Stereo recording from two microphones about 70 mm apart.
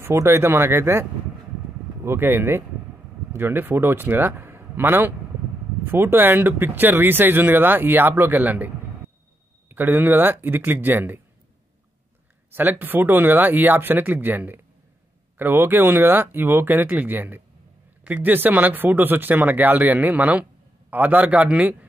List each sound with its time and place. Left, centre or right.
0.0 s a man's voice: right
2.0 s a man's voice: right
12.4 s speech: right